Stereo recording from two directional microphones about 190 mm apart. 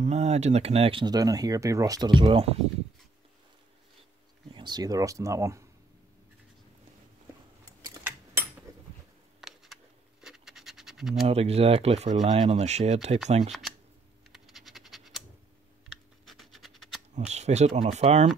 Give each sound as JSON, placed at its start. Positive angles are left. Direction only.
{"t": 0.0, "sound": "speech", "side_deg": -35}
{"t": 4.6, "sound": "speech", "side_deg": -20}
{"t": 7.8, "sound": "a sound", "side_deg": -15}
{"t": 9.4, "sound": "a sound", "side_deg": 0}
{"t": 10.2, "sound": "scratch", "side_deg": -5}
{"t": 11.2, "sound": "speech", "side_deg": -35}
{"t": 13.5, "sound": "speech", "side_deg": 0}
{"t": 14.3, "sound": "scratch", "side_deg": 0}
{"t": 16.3, "sound": "scratch", "side_deg": 0}
{"t": 17.3, "sound": "speech", "side_deg": -35}